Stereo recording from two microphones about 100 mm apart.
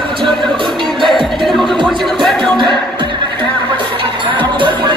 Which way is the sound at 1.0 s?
Centre (ahead or behind).